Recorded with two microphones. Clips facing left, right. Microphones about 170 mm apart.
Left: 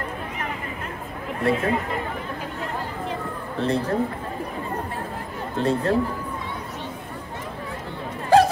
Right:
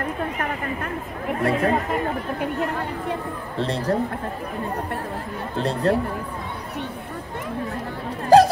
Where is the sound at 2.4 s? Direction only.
60° right (ahead or behind).